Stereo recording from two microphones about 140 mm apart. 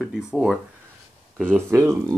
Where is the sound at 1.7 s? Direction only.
20° right (ahead or behind).